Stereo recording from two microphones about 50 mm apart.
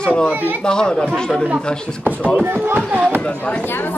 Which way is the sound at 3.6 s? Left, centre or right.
Left.